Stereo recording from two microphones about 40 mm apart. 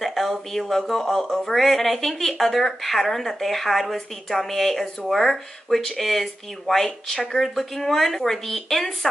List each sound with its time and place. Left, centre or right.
0.0 s speech: centre